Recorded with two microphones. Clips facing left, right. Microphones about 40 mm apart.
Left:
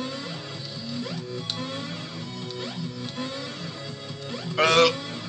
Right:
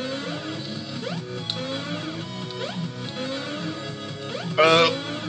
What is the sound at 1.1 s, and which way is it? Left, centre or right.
Music, right.